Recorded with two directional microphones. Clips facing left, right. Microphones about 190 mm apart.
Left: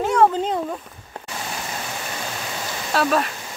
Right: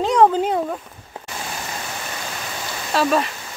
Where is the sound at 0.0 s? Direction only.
15° right (ahead or behind).